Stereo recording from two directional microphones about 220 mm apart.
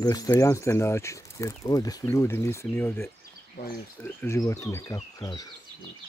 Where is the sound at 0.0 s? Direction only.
15° left (ahead or behind).